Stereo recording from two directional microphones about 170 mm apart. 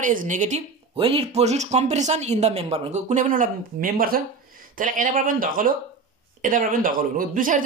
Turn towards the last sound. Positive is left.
turn(degrees=-50)  # may be behind; listen again after turning